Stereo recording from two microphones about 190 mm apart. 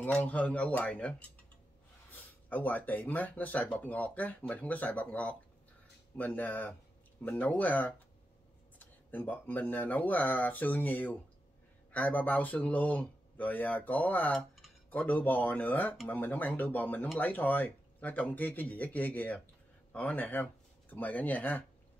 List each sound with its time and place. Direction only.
0.0 s speech: 5° left (ahead or behind)
2.1 s speech: 10° left (ahead or behind)